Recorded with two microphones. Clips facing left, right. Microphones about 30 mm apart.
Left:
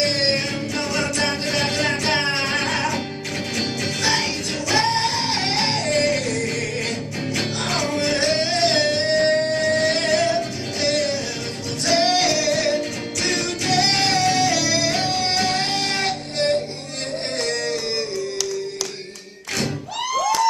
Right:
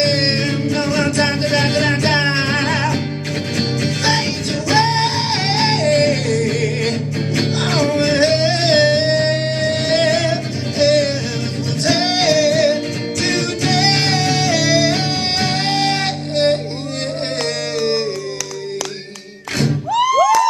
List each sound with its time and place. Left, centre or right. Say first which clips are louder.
0.0 s music: right 4 dB; right
11.8 s music: right 2 dB; centre